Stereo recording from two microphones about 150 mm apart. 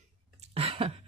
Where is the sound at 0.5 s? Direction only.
40° right (ahead or behind).